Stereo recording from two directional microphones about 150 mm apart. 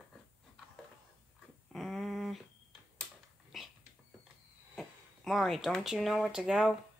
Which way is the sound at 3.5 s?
Centre (ahead or behind).